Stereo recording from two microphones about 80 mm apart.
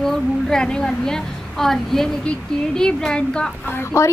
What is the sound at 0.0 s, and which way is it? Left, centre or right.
A woman's voice, centre.